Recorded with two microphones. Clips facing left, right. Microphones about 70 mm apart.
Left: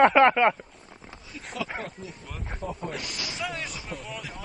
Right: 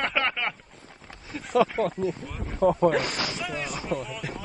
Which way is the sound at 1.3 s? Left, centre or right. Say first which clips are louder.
Right 6 dB; right.